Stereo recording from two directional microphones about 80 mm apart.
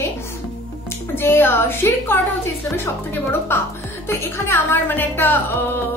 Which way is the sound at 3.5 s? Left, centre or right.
Left.